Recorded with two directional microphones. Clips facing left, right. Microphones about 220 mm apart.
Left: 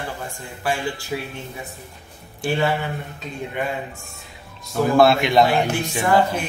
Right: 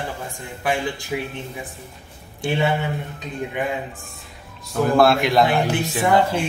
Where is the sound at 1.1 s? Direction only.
15° right (ahead or behind).